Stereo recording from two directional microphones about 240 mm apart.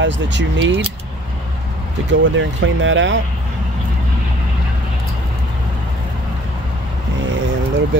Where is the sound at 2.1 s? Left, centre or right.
Right.